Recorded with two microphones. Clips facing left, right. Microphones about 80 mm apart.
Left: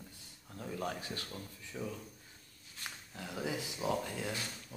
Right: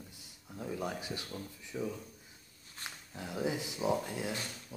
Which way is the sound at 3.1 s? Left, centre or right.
Right.